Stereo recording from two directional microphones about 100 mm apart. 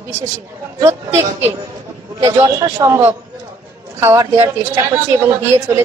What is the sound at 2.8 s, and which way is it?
A man's voice, 25° right (ahead or behind).